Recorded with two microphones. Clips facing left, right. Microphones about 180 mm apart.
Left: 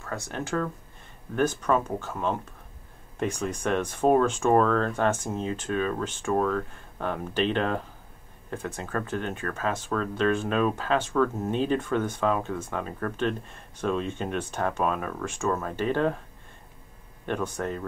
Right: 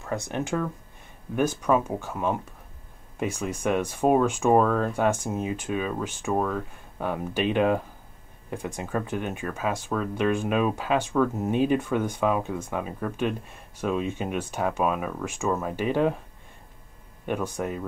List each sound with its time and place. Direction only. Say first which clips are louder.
0.0 s speech: right 4 dB; 15° right (ahead or behind)
17.3 s speech: right 1 dB; 10° right (ahead or behind)